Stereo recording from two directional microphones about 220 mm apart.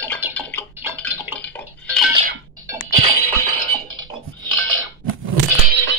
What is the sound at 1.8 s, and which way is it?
Dishes, centre (ahead or behind).